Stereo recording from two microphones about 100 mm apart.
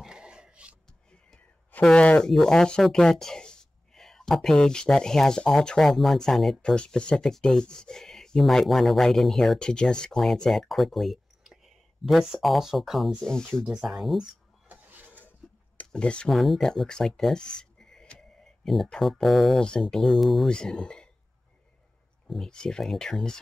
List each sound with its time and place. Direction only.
0.0 s a sound: 10° right (ahead or behind)
1.1 s speech: 10° left (ahead or behind)
13.7 s speech: 5° right (ahead or behind)
14.7 s a sound: 15° right (ahead or behind)
15.8 s speech: 10° left (ahead or behind)
22.3 s speech: 5° left (ahead or behind)